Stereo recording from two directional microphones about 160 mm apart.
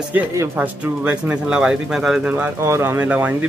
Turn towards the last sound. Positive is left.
turn(degrees=-10)  # may be behind; listen again after turning